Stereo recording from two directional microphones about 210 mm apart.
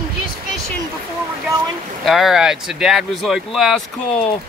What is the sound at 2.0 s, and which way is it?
Speech, centre (ahead or behind).